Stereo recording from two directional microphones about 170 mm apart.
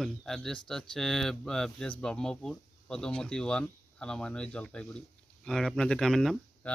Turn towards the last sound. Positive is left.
turn(degrees=5)  # may be behind; listen again after turning